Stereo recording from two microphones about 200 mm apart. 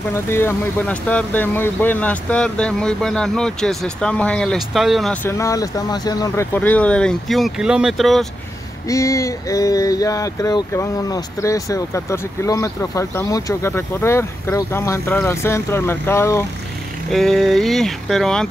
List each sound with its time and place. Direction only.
0.1 s speech: 10° left (ahead or behind)
5.2 s speech: 15° left (ahead or behind)
8.8 s speech: 15° left (ahead or behind)
17.1 s speech: centre (ahead or behind)